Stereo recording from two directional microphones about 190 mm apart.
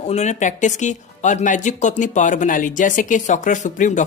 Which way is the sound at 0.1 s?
35° left (ahead or behind).